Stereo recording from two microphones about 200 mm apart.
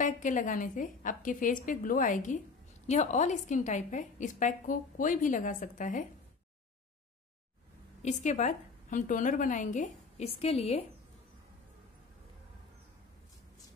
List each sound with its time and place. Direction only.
0.0 s a woman's voice: 40° left (ahead or behind)
8.0 s a woman's voice: 35° left (ahead or behind)